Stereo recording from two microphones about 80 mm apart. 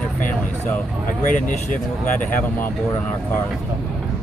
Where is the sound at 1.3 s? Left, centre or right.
Centre.